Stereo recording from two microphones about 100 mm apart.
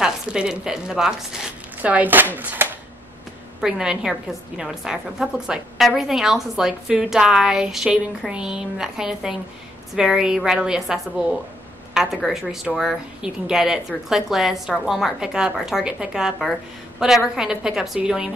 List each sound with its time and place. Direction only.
0.0 s speech: 5° right (ahead or behind)
1.8 s a woman's voice: 15° right (ahead or behind)
3.6 s a woman's voice: 5° right (ahead or behind)